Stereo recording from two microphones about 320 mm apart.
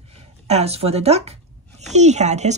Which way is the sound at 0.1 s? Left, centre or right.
Centre.